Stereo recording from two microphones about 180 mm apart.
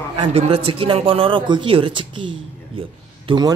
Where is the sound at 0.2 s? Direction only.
35° right (ahead or behind).